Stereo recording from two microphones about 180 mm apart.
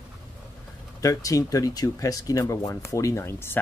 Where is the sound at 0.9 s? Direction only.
20° left (ahead or behind).